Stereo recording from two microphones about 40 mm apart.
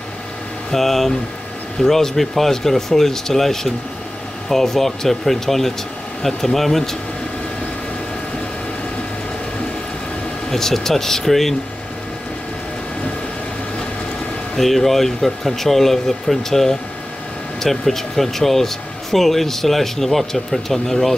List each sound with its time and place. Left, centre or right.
0.7 s speech: centre
10.5 s speech: centre
14.6 s speech: centre